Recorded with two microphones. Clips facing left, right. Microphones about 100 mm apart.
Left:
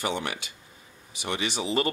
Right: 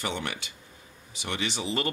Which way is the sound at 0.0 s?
10° left (ahead or behind).